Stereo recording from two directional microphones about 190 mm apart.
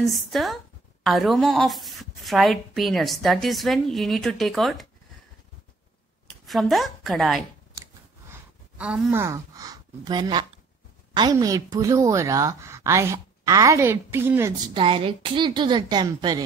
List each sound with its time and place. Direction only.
0.0 s a woman's voice: centre (ahead or behind)
6.2 s a woman's voice: centre (ahead or behind)
8.3 s a sound: 5° right (ahead or behind)
9.2 s a woman's voice: 15° right (ahead or behind)
14.7 s a woman's voice: 25° right (ahead or behind)